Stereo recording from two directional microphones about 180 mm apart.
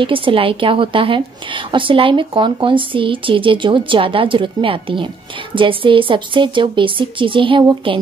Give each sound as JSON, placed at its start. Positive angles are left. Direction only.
{"t": 0.0, "sound": "a woman's voice", "side_deg": -30}